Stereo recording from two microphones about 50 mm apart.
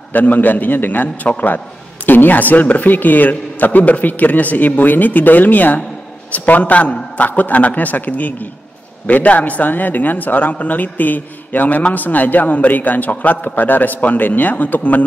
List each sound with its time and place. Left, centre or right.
0.1 s a man's voice: left